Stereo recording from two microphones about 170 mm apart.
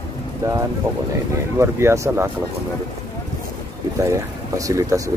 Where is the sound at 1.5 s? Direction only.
15° right (ahead or behind).